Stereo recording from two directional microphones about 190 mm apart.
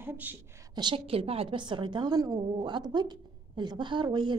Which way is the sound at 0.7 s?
25° right (ahead or behind).